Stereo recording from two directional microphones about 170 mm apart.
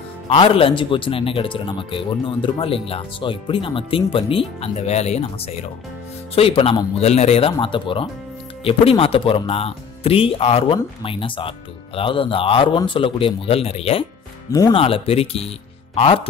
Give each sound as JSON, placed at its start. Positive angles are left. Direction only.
{"t": 0.3, "sound": "speech", "side_deg": 35}